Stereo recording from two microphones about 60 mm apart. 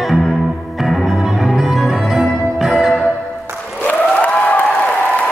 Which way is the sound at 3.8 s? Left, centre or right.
Left.